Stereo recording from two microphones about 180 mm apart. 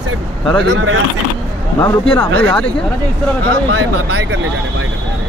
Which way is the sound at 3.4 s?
70° right (ahead or behind).